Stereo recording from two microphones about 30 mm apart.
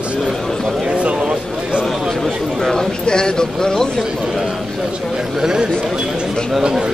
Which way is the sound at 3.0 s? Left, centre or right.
Left.